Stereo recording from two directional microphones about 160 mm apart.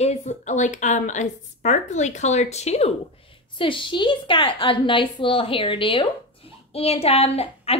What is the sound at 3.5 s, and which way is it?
A woman's voice, 30° left (ahead or behind).